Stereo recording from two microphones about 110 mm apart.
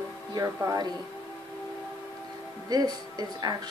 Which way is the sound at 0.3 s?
35° right (ahead or behind).